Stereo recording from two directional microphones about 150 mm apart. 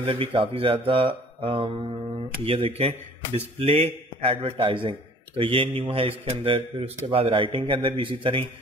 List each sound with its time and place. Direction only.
0.0 s a man's voice: 35° right (ahead or behind)